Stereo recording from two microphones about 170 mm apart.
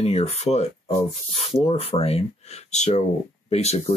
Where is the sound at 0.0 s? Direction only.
40° left (ahead or behind).